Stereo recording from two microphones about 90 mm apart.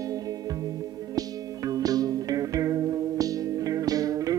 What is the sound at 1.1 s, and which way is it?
Music, 40° right (ahead or behind).